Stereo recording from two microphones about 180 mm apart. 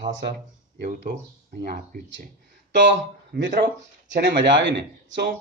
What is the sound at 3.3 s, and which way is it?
Speech, 70° right (ahead or behind).